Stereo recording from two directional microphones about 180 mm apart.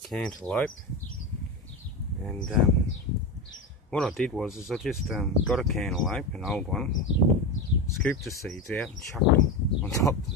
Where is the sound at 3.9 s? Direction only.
Centre (ahead or behind).